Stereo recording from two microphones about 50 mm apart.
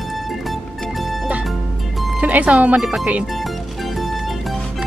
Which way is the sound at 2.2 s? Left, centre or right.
Right.